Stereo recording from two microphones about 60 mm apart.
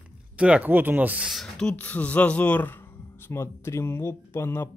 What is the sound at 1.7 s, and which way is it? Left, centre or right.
Speech, left.